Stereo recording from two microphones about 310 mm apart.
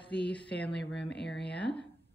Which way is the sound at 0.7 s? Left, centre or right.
Left.